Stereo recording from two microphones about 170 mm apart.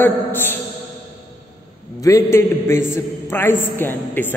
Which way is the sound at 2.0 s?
15° left (ahead or behind).